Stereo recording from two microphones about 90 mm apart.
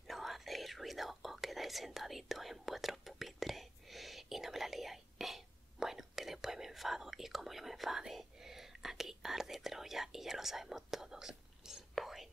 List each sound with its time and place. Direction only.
0.1 s whispering: centre (ahead or behind)